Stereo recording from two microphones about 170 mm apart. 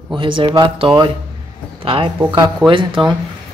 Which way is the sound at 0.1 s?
30° right (ahead or behind).